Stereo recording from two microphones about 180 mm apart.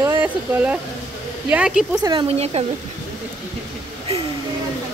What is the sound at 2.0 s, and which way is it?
Speech, 30° right (ahead or behind).